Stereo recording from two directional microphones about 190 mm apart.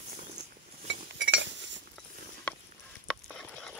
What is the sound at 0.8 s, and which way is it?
Cutlery, 70° right (ahead or behind).